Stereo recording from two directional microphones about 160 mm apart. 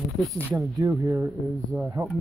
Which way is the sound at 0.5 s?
20° right (ahead or behind).